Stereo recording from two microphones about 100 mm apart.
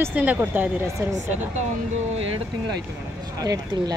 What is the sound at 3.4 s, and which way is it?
Speech, 35° right (ahead or behind).